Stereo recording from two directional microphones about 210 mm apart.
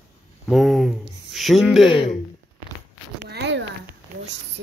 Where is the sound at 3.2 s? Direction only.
55° right (ahead or behind).